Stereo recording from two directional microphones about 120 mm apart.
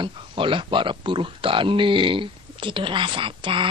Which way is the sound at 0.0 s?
45° right (ahead or behind).